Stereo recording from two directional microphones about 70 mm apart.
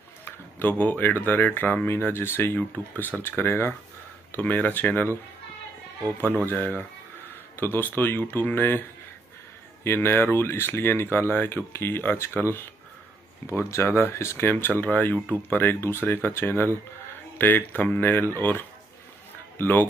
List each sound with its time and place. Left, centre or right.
0.2 s a sound: left
1.2 s speech: left
6.2 s speech: left
9.8 s speech: left
14.8 s speech: left
19.6 s speech: left